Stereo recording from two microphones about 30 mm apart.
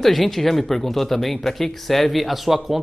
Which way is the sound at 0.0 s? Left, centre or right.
Centre.